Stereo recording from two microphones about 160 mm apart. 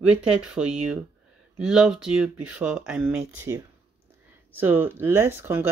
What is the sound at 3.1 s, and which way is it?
Speech, 15° right (ahead or behind).